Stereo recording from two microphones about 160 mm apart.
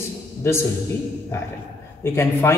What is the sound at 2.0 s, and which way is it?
Speech, 15° left (ahead or behind).